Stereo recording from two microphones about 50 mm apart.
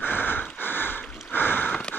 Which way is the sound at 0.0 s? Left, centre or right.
Left.